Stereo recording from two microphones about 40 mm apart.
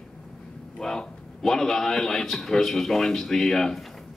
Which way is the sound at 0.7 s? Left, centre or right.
Centre.